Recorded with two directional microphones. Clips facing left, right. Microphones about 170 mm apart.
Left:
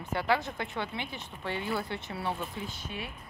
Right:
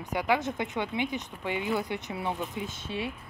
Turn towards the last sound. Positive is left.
turn(degrees=-25)  # may be behind; listen again after turning